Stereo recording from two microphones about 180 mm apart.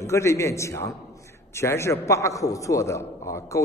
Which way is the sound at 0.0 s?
15° left (ahead or behind).